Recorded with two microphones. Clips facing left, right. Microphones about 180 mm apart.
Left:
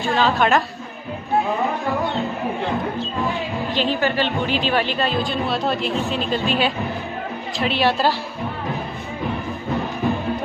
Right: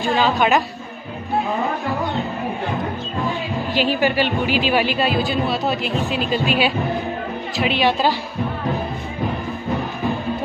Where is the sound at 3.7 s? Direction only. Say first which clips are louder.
Right 2 dB; 10° right (ahead or behind).